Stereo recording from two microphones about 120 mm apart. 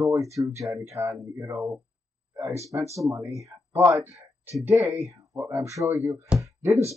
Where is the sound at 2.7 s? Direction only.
25° right (ahead or behind).